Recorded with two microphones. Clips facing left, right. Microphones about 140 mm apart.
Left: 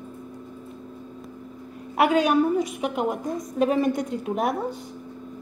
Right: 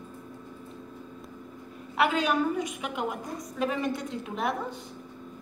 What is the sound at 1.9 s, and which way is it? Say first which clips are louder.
A woman's voice: left 6 dB; 45° left (ahead or behind).